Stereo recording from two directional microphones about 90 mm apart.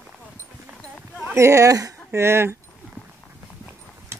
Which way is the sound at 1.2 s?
30° right (ahead or behind).